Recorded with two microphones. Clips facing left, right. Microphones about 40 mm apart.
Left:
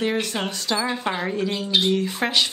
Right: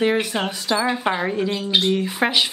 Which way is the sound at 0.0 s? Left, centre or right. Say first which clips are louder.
Right 4 dB; centre.